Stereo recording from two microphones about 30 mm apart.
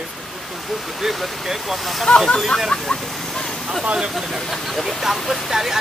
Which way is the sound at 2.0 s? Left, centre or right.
Left.